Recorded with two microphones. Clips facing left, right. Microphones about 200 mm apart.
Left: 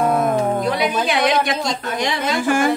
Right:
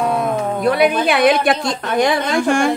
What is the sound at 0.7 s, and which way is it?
Speech, 60° right (ahead or behind).